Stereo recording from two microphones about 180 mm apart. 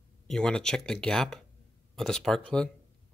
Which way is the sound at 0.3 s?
5° left (ahead or behind).